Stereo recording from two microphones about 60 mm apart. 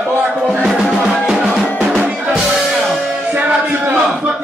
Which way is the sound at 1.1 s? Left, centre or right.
Centre.